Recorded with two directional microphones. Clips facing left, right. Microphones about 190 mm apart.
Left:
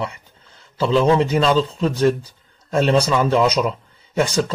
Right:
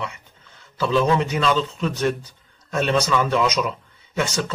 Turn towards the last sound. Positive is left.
turn(degrees=35)  # may be behind; listen again after turning